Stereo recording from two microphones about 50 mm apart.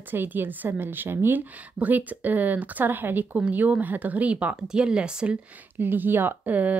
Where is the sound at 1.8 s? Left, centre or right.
Right.